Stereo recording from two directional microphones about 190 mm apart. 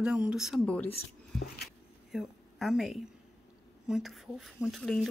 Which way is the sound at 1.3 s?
55° left (ahead or behind).